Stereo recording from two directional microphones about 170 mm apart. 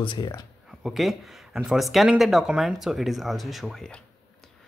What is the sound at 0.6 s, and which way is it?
Speech, centre (ahead or behind).